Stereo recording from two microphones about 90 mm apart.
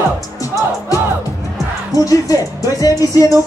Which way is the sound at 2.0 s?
40° left (ahead or behind).